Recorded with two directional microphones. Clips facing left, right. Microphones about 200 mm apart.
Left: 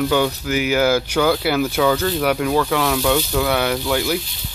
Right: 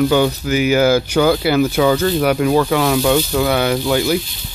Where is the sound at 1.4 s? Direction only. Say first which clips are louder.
Right 4 dB; 5° left (ahead or behind).